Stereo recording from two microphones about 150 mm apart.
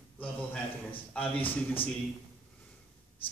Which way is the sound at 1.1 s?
10° left (ahead or behind).